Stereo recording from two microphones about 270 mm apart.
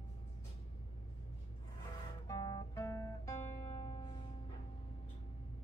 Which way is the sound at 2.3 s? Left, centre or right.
Centre.